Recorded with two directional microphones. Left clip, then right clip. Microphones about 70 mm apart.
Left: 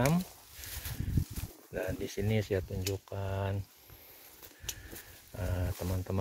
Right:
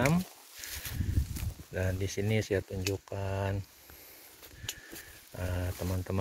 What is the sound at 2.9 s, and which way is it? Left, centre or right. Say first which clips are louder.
Speech: right 2 dB; centre.